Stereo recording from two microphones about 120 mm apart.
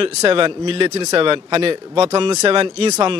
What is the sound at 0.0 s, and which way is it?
Speech, 45° right (ahead or behind).